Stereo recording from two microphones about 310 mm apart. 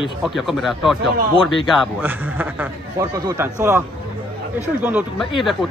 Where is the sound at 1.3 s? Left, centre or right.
Centre.